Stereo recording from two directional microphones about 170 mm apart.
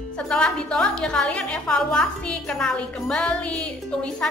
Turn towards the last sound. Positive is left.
turn(degrees=5)  # may be behind; listen again after turning